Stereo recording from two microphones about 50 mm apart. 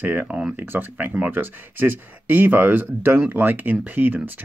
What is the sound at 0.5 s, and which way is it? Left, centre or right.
Speech, right.